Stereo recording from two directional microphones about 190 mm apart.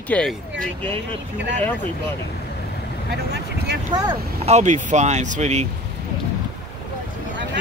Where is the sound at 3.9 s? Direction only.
20° right (ahead or behind).